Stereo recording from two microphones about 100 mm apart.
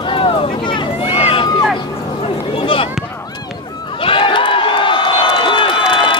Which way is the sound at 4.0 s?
60° left (ahead or behind).